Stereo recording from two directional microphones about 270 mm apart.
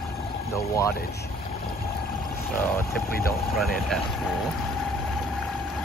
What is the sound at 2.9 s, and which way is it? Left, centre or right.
Speech, left.